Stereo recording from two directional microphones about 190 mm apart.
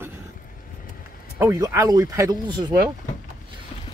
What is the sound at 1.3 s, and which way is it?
Speech, 15° right (ahead or behind).